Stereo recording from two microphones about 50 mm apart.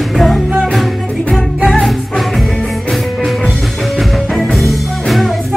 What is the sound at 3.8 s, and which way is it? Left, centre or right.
Music, centre.